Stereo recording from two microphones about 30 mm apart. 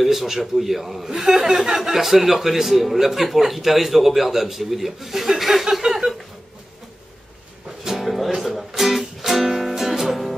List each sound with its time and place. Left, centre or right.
0.0 s a man's voice: centre
1.1 s speech: centre
5.8 s chuckle: centre
7.9 s music: centre